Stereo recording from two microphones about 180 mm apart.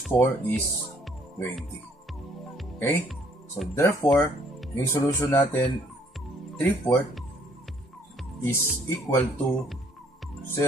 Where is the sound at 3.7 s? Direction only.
15° left (ahead or behind).